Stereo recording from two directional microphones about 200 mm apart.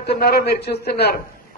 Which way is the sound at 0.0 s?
50° left (ahead or behind).